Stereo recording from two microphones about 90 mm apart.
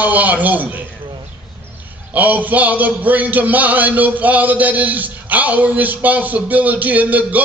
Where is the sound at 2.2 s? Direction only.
20° right (ahead or behind).